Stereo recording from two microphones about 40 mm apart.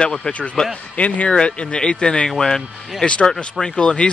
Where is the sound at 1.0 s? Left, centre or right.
Left.